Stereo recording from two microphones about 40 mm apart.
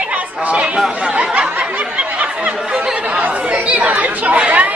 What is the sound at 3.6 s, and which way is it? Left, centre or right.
Chatter, right.